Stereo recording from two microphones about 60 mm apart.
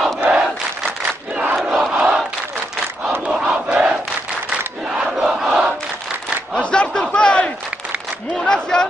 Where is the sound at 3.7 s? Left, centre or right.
Centre.